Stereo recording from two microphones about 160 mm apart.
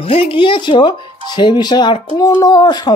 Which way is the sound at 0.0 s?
35° left (ahead or behind).